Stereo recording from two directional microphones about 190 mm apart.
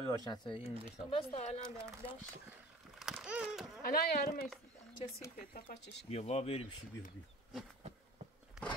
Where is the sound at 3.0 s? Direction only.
5° right (ahead or behind).